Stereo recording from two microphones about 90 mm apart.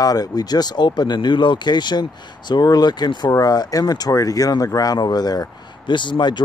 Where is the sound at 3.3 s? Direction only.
45° left (ahead or behind).